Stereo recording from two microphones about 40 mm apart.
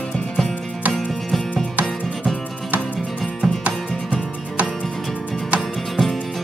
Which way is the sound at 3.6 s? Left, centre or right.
Right.